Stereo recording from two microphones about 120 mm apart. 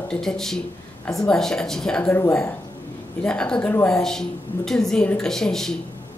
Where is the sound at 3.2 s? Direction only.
5° left (ahead or behind).